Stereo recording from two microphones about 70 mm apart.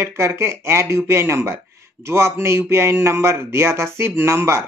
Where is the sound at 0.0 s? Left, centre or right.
Right.